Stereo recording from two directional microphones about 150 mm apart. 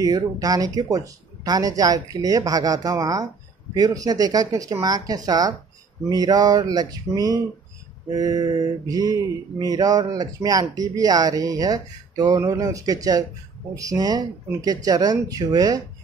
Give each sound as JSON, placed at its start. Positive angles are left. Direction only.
{"t": 0.0, "sound": "speech", "side_deg": -25}